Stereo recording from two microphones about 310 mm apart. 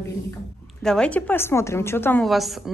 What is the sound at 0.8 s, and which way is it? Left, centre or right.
A woman's voice, centre.